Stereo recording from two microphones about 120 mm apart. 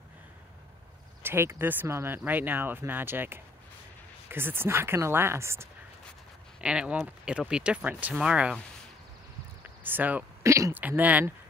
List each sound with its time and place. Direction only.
1.2 s speech: 20° right (ahead or behind)
6.6 s speech: 10° right (ahead or behind)
9.6 s a sound: 15° right (ahead or behind)
10.4 s speech: 25° right (ahead or behind)
10.7 s speech: 15° right (ahead or behind)